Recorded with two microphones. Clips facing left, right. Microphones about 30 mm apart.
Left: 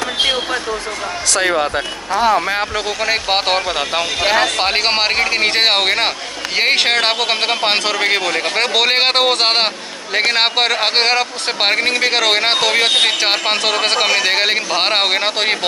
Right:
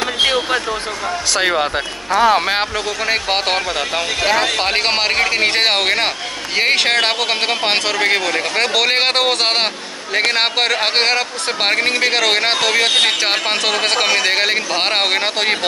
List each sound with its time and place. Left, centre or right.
1.3 s speech: centre
2.4 s speech: right
2.7 s speech: centre